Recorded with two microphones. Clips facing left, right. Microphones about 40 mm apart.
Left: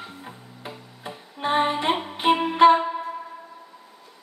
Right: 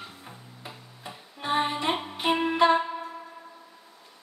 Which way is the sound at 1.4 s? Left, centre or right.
Left.